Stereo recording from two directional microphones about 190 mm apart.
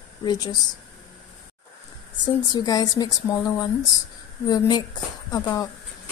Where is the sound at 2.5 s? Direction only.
20° left (ahead or behind).